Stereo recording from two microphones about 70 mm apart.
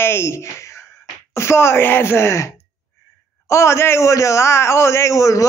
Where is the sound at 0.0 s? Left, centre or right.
Left.